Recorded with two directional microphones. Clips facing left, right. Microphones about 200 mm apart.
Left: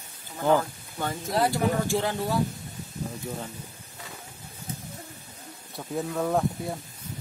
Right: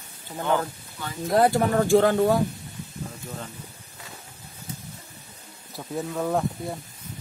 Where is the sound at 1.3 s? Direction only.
50° right (ahead or behind).